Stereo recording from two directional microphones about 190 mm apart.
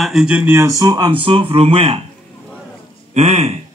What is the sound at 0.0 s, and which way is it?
A man's voice, centre (ahead or behind).